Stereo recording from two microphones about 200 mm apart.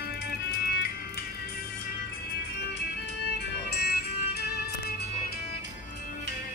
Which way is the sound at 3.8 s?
55° left (ahead or behind).